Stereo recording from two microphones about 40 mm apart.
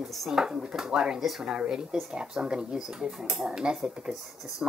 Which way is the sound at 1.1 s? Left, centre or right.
Centre.